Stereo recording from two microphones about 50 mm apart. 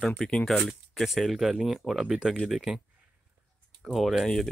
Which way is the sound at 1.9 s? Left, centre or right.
Centre.